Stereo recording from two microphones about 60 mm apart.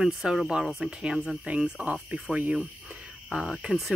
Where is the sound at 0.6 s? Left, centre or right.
Centre.